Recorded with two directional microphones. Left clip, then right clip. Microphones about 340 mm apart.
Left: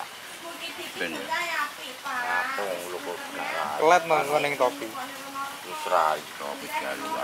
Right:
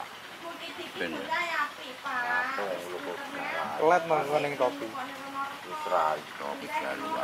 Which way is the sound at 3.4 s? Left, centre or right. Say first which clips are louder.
Left 3 dB; centre.